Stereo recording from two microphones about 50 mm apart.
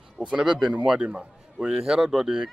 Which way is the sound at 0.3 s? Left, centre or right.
Centre.